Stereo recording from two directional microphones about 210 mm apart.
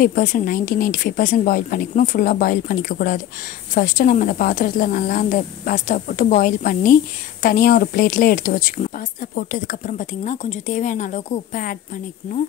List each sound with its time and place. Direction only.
0.0 s speech: 40° left (ahead or behind)